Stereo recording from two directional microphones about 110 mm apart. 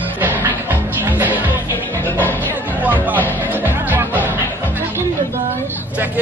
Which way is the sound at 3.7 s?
15° right (ahead or behind).